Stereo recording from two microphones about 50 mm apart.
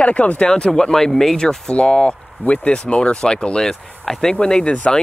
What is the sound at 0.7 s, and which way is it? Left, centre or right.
Speech, centre.